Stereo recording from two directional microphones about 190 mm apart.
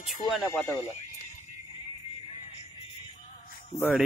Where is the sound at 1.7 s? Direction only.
25° left (ahead or behind).